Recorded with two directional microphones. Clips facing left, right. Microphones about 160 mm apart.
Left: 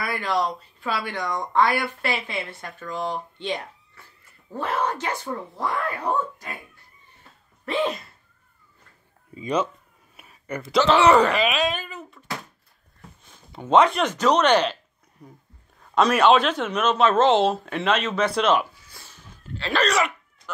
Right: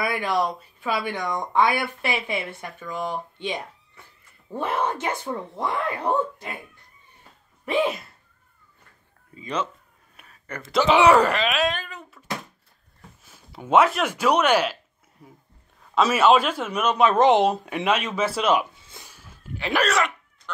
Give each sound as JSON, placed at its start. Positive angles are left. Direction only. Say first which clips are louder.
{"t": 0.0, "sound": "speech", "louder": "right 1 dB", "side_deg": -10}
{"t": 4.6, "sound": "speech", "louder": "even", "side_deg": -25}
{"t": 7.6, "sound": "speech", "louder": "right 2 dB", "side_deg": -10}
{"t": 9.3, "sound": "speech", "louder": "left 4 dB", "side_deg": 15}
{"t": 10.1, "sound": "a sound", "louder": "left 5 dB", "side_deg": 10}
{"t": 10.7, "sound": "speech", "louder": "even", "side_deg": -10}
{"t": 11.3, "sound": "fart", "louder": "left 1 dB", "side_deg": 0}
{"t": 13.2, "sound": "speech", "louder": "left 2 dB", "side_deg": -5}
{"t": 15.9, "sound": "speech", "louder": "left 1 dB", "side_deg": -5}
{"t": 18.8, "sound": "a sound", "louder": "right 2 dB", "side_deg": -25}
{"t": 19.0, "sound": "a sound", "louder": "even", "side_deg": -10}
{"t": 19.9, "sound": "a sound", "louder": "even", "side_deg": 0}